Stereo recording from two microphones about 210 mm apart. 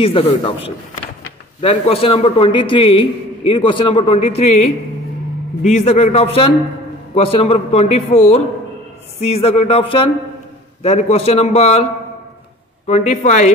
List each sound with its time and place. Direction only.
0.0 s a man's voice: 25° left (ahead or behind)